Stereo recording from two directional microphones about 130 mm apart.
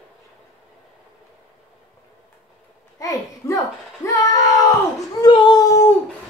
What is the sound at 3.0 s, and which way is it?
A child's voice, 25° left (ahead or behind).